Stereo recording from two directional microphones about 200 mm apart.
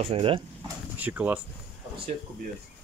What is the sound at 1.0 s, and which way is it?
Speech, 10° right (ahead or behind).